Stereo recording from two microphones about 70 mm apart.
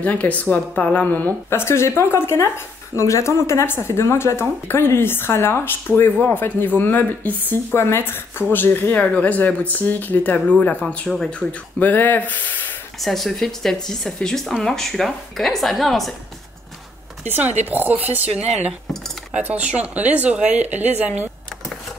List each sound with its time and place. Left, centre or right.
0.0 s speech: left
1.5 s speech: left
11.1 s speech: centre
11.8 s speech: left
13.0 s speech: centre
17.3 s speech: right
19.5 s speech: centre